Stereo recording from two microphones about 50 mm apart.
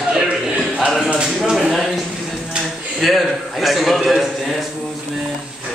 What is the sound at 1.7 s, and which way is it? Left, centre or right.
Speech, centre.